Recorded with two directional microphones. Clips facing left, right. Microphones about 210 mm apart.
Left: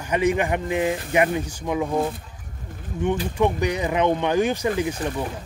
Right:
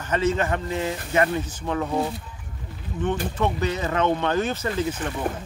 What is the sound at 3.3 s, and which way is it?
Speech, 15° left (ahead or behind).